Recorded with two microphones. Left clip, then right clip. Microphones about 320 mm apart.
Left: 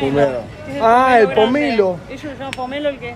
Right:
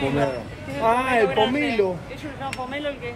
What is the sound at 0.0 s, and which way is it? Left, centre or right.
Speech, left.